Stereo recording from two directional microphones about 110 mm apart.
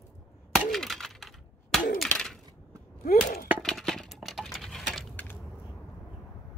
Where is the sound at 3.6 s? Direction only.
5° left (ahead or behind).